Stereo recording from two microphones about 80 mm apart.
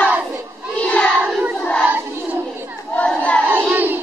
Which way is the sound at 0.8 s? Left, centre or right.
Centre.